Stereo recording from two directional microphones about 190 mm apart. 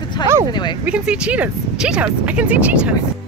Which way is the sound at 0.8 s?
5° right (ahead or behind).